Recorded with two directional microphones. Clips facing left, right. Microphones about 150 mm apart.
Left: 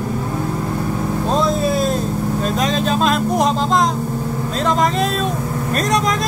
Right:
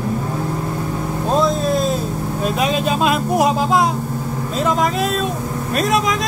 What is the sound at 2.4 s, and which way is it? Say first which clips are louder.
Speech: right 2 dB; 10° right (ahead or behind).